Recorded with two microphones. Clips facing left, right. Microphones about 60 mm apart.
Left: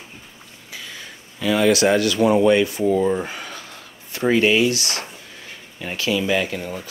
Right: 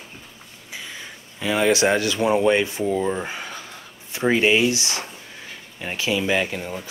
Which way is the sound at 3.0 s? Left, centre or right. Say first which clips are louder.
Left 4 dB; centre.